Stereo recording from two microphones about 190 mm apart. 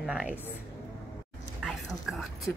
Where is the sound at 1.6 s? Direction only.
Centre (ahead or behind).